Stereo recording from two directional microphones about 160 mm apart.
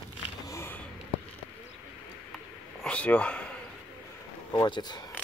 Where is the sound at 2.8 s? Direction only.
5° left (ahead or behind).